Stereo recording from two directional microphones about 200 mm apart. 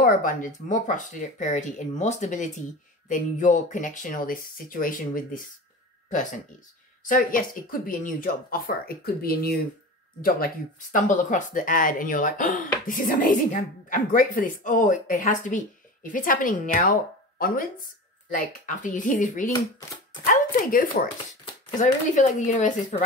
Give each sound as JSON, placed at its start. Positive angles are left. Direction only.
{"t": 0.0, "sound": "speech", "side_deg": 45}
{"t": 7.1, "sound": "speech", "side_deg": 45}
{"t": 18.3, "sound": "speech", "side_deg": 40}